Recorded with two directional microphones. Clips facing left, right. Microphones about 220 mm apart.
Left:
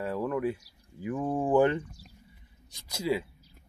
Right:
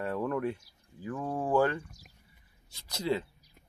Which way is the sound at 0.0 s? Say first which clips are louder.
Left 2 dB; centre (ahead or behind).